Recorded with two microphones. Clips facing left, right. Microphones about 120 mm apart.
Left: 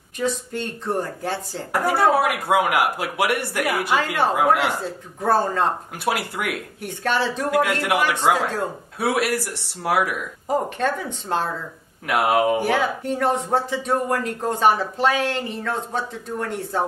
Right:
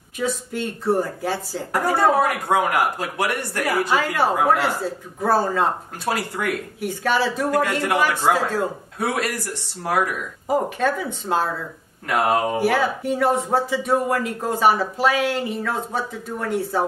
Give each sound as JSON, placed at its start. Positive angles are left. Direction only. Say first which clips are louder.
{"t": 0.2, "sound": "speech", "louder": "even", "side_deg": -5}
{"t": 1.7, "sound": "speech", "louder": "even", "side_deg": 5}
{"t": 4.4, "sound": "speech", "louder": "left 2 dB", "side_deg": 15}
{"t": 5.2, "sound": "speech", "louder": "even", "side_deg": -5}
{"t": 6.0, "sound": "speech", "louder": "even", "side_deg": 5}
{"t": 6.8, "sound": "speech", "louder": "right 1 dB", "side_deg": -10}
{"t": 7.5, "sound": "speech", "louder": "left 2 dB", "side_deg": 10}
{"t": 8.1, "sound": "speech", "louder": "even", "side_deg": -10}
{"t": 8.9, "sound": "speech", "louder": "left 5 dB", "side_deg": 10}
{"t": 10.5, "sound": "speech", "louder": "right 1 dB", "side_deg": -5}
{"t": 12.1, "sound": "speech", "louder": "left 1 dB", "side_deg": 10}
{"t": 12.5, "sound": "speech", "louder": "right 1 dB", "side_deg": -10}